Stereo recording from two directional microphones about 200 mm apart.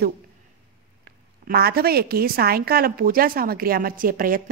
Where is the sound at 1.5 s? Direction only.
50° right (ahead or behind).